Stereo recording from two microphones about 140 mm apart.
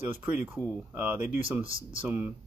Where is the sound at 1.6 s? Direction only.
40° right (ahead or behind).